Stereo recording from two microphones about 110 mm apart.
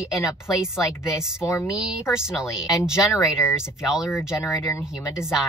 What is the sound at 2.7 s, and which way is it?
Speech, 5° right (ahead or behind).